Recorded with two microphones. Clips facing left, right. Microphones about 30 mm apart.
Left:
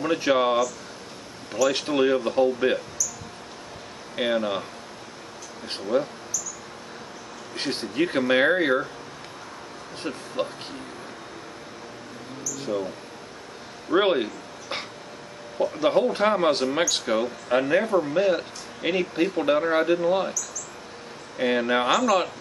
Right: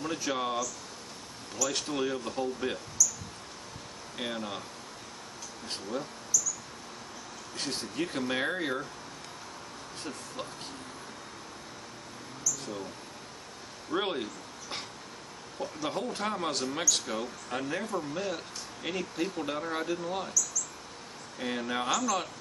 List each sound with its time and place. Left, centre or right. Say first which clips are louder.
0.0 s speech: left 11 dB; left
3.0 s a sound: right 2 dB; left
4.2 s speech: left 12 dB; left
5.7 s speech: left 11 dB; left
7.5 s speech: left 8 dB; left
10.0 s speech: left 11 dB; left
12.5 s mouse: left 11 dB; left
13.8 s speech: left 11 dB; left
21.4 s speech: left 10 dB; left